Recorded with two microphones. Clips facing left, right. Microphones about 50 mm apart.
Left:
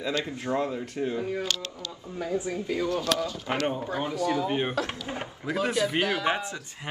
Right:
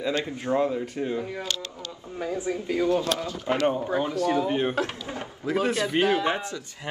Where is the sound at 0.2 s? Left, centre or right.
Centre.